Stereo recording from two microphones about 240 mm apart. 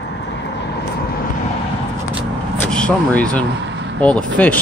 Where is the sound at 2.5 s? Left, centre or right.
Centre.